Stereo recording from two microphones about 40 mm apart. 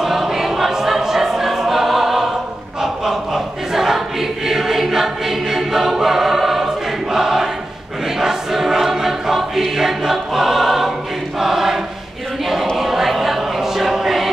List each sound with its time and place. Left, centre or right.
0.0 s choir: centre
12.7 s music: centre